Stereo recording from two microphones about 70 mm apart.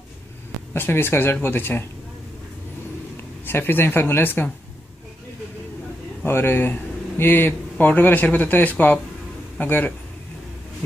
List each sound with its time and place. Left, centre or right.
0.7 s speech: left
3.4 s speech: left
6.2 s speech: left